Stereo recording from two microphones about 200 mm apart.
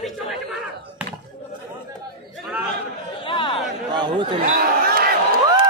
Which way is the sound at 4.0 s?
20° right (ahead or behind).